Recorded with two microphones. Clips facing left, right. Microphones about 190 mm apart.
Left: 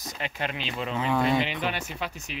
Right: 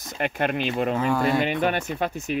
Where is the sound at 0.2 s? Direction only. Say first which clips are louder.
Right 9 dB; 55° right (ahead or behind).